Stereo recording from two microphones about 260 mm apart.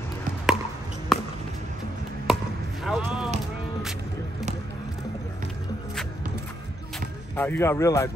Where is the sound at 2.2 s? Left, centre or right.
Centre.